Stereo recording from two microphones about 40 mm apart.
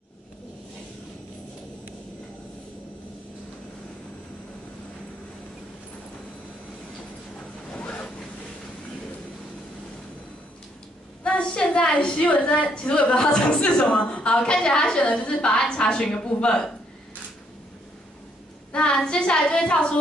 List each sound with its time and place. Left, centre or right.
11.2 s a woman's voice: left
18.7 s a sound: left
19.0 s a woman's voice: left